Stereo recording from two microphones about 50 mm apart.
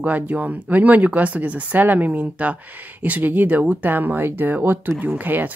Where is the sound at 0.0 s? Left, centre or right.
Right.